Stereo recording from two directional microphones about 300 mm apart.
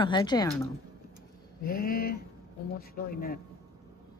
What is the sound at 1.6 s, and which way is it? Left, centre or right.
A woman's voice, left.